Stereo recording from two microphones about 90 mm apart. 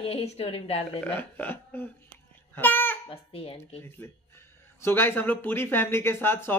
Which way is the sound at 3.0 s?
90° left.